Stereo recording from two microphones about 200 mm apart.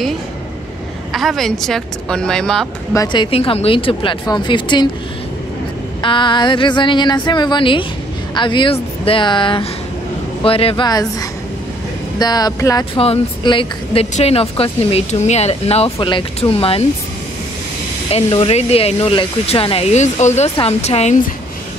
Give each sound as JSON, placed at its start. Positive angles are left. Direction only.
{"t": 1.1, "sound": "speech", "side_deg": 0}
{"t": 2.9, "sound": "speech", "side_deg": 20}
{"t": 6.0, "sound": "speech", "side_deg": 25}
{"t": 12.9, "sound": "speech", "side_deg": 30}
{"t": 18.1, "sound": "speech", "side_deg": 30}